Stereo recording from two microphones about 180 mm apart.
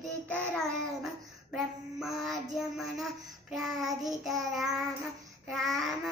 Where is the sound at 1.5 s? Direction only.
Centre (ahead or behind).